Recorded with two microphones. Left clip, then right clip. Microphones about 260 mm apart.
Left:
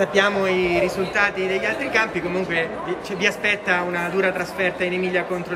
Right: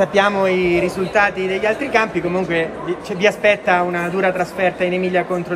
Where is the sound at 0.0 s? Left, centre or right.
Centre.